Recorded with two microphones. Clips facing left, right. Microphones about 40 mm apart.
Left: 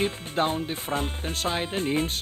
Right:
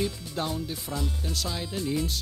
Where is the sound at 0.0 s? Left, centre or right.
Left.